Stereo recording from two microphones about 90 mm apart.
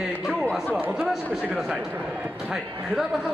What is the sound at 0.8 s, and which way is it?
Speech, 20° right (ahead or behind).